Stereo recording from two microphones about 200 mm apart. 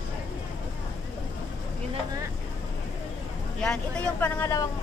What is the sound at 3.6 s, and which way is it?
Speech, 5° left (ahead or behind).